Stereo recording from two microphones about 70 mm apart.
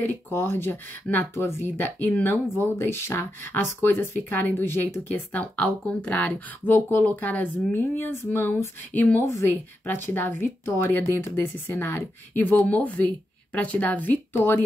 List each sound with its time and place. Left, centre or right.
0.3 s speech: left
5.1 s speech: left
12.4 s speech: left